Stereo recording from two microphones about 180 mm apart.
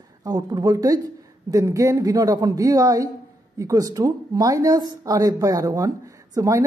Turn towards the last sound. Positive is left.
turn(degrees=-20)  # may be behind; listen again after turning